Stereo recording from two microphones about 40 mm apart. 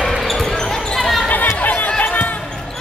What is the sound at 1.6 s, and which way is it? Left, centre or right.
Chatter, left.